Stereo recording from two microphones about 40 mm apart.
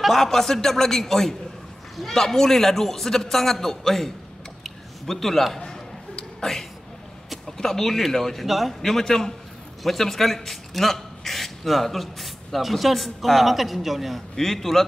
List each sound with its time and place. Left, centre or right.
0.0 s a man's voice: centre
4.6 s a sound: centre
5.6 s a sound: centre
7.4 s a man's voice: centre
8.5 s a man's voice: centre
8.8 s a man's voice: centre
14.3 s a man's voice: centre